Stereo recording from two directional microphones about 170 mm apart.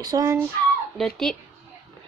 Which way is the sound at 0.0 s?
20° right (ahead or behind).